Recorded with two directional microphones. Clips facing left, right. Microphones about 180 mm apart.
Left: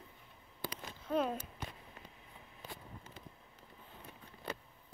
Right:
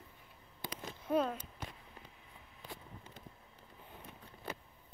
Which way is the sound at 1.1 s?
5° left (ahead or behind).